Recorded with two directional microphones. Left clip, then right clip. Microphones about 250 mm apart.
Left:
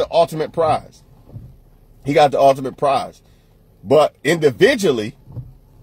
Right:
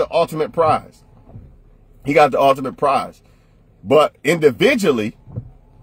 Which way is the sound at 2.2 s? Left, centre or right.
Centre.